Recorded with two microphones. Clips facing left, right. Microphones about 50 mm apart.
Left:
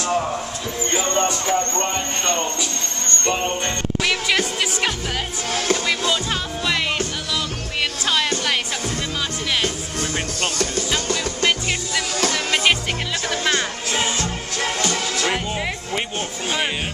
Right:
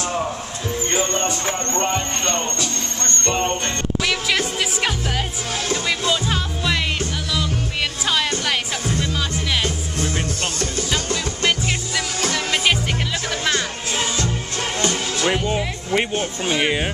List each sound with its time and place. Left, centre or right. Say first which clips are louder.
0.9 s a sound: left 2 dB; right
1.8 s music: right 2 dB; centre
8.0 s music: even; centre
12.3 s music: even; centre
13.5 s music: even; centre
14.8 s music: right 4 dB; right
16.4 s speech: right 3 dB; centre